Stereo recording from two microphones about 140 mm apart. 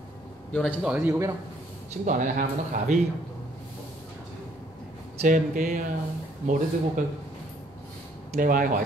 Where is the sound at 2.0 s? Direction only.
65° right (ahead or behind).